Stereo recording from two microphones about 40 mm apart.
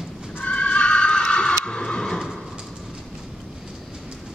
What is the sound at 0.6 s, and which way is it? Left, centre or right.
Neigh, left.